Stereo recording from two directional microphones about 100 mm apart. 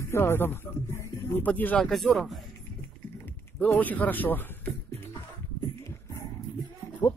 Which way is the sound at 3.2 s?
20° left (ahead or behind).